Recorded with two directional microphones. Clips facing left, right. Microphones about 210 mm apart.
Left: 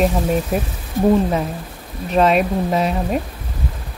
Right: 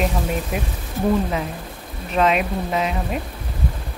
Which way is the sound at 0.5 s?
40° left (ahead or behind).